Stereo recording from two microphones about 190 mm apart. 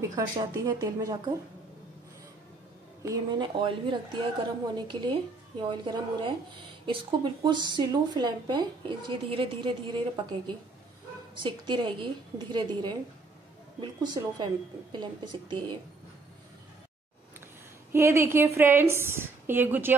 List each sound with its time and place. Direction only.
0.1 s a woman's voice: 20° right (ahead or behind)
3.0 s a woman's voice: 20° right (ahead or behind)
17.9 s a woman's voice: 15° right (ahead or behind)